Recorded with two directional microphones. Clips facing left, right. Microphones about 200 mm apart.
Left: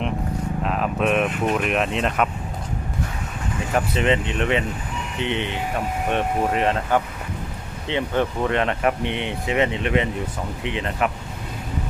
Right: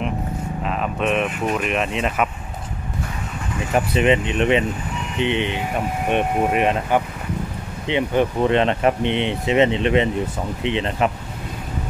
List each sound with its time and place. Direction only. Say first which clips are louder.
0.7 s speech: even; centre (ahead or behind)
3.7 s speech: right 3 dB; 15° right (ahead or behind)